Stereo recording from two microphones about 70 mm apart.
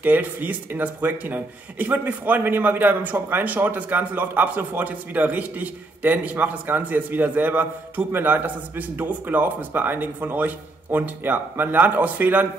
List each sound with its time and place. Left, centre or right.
0.0 s speech: right